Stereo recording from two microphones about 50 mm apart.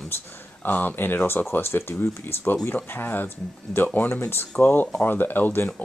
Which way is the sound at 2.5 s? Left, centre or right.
Left.